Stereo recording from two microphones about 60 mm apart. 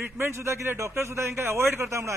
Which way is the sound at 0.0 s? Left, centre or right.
Right.